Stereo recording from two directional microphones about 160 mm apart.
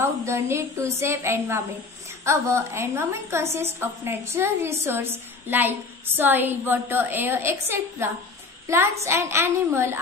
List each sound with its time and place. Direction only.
0.0 s a woman's voice: 15° right (ahead or behind)